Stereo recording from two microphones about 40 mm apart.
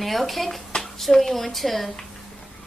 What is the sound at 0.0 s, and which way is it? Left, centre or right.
A woman's voice, centre.